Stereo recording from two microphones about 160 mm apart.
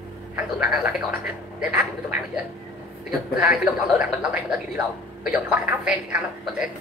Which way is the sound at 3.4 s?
5° right (ahead or behind).